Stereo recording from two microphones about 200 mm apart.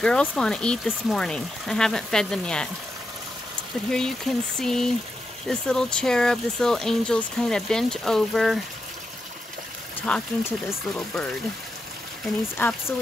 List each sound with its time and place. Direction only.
0.0 s speech: 5° left (ahead or behind)
3.9 s speech: 5° left (ahead or behind)
10.0 s speech: 10° left (ahead or behind)
12.5 s speech: 10° left (ahead or behind)